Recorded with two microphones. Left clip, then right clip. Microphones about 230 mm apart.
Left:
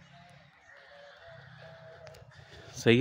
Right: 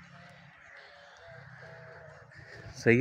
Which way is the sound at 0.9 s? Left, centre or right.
Centre.